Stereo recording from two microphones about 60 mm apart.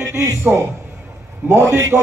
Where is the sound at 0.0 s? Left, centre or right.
Right.